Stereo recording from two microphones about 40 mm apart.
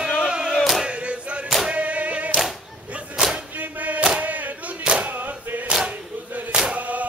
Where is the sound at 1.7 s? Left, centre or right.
Right.